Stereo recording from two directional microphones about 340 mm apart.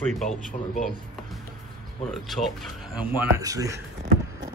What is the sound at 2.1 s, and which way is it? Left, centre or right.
Speech, centre.